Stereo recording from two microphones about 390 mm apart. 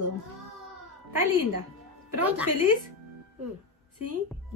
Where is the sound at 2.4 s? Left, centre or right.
Right.